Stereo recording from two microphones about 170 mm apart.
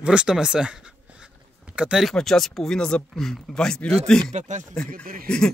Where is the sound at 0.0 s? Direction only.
5° right (ahead or behind).